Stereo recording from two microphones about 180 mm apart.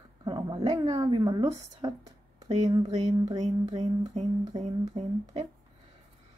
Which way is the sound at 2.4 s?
40° right (ahead or behind).